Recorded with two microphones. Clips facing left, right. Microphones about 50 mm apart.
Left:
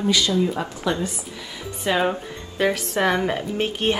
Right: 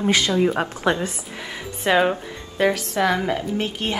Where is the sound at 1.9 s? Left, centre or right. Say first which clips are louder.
Right 4 dB; right.